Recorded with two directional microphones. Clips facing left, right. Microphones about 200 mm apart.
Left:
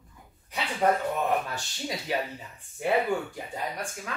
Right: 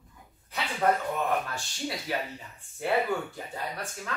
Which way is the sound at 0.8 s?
15° left (ahead or behind).